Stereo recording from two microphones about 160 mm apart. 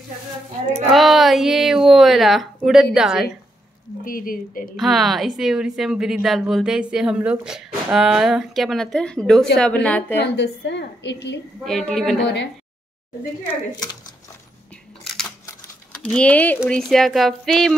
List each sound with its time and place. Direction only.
0.8 s a woman's voice: centre (ahead or behind)
4.0 s speech: 60° left (ahead or behind)
4.7 s a woman's voice: centre (ahead or behind)
10.1 s a woman's voice: 90° left
11.6 s speech: centre (ahead or behind)
15.0 s a sound: 5° left (ahead or behind)
16.1 s a woman's voice: 5° left (ahead or behind)